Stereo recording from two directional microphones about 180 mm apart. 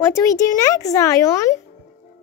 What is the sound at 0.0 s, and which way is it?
Speech, 15° left (ahead or behind).